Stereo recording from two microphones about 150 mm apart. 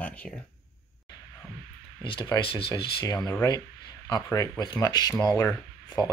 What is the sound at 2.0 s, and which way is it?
Speech, 30° left (ahead or behind).